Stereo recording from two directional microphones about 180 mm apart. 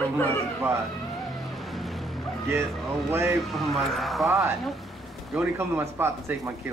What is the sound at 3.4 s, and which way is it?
Speech, centre (ahead or behind).